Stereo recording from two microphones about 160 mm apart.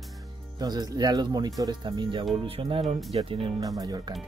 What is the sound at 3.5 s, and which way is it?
Speech, 20° right (ahead or behind).